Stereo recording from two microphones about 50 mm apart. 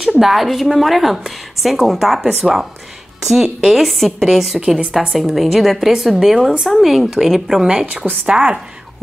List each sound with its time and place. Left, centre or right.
0.2 s a woman's voice: centre
7.8 s a woman's voice: right